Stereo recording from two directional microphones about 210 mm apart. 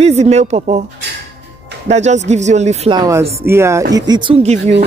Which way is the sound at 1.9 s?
35° right (ahead or behind).